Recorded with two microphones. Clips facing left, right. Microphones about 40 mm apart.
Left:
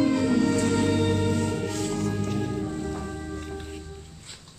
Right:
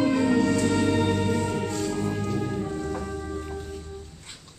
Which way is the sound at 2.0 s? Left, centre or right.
Right.